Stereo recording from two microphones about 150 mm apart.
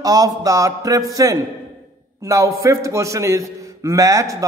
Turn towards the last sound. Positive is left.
turn(degrees=-20)  # may be behind; listen again after turning